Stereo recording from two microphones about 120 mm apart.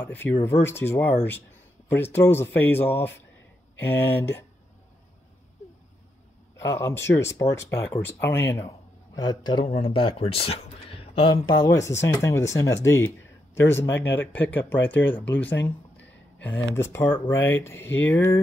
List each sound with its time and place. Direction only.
0.0 s speech: 15° left (ahead or behind)
6.6 s speech: 20° left (ahead or behind)
9.7 s speech: 50° left (ahead or behind); by 18.4 s 15° left (ahead or behind)